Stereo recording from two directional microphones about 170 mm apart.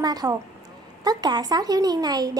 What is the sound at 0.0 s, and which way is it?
Speech, 20° right (ahead or behind).